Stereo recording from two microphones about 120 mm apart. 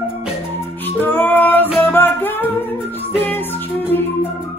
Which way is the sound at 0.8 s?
15° left (ahead or behind).